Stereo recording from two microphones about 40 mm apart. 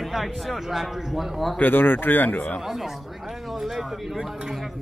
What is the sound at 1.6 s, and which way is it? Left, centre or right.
Speech, left.